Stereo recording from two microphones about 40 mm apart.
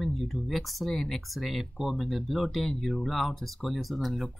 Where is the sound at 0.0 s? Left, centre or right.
Centre.